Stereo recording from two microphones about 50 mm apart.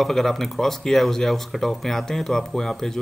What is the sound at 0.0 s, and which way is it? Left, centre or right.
Speech, centre.